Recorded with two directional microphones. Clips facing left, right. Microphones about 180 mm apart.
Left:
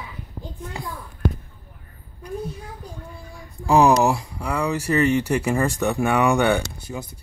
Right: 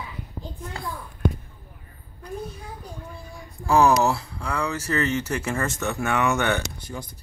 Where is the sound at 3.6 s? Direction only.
15° left (ahead or behind).